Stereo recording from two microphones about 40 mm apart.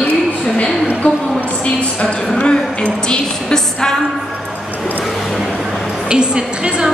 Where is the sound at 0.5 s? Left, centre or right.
Left.